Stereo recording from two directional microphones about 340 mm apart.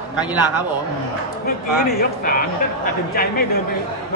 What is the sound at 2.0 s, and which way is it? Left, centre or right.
Speech, left.